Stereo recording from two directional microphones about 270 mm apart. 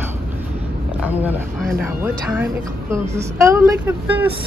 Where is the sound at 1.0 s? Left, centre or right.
Centre.